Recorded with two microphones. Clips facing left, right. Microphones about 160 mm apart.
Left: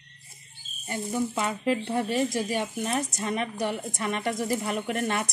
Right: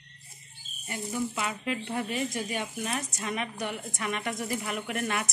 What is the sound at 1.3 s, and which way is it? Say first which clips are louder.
Speech: left 6 dB; 35° left (ahead or behind).